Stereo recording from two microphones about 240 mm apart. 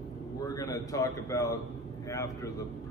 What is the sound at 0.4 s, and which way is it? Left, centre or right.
A man's voice, centre.